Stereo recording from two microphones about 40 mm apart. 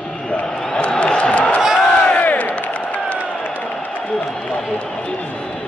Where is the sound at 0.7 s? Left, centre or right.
Left.